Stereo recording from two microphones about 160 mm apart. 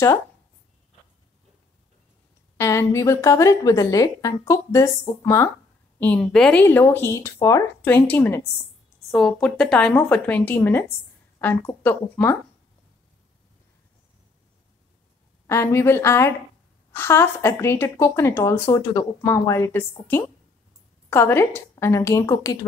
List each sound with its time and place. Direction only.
2.5 s a woman's voice: 20° left (ahead or behind)
5.9 s a woman's voice: 10° left (ahead or behind)
15.4 s a woman's voice: 20° left (ahead or behind)
21.1 s a woman's voice: 15° left (ahead or behind)